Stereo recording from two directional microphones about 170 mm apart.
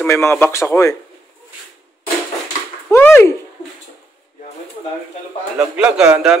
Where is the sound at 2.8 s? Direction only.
10° left (ahead or behind).